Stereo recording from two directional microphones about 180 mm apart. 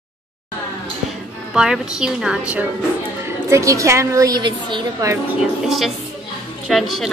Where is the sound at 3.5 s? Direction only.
15° right (ahead or behind).